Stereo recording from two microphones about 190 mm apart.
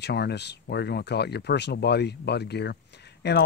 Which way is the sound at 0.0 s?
60° left (ahead or behind).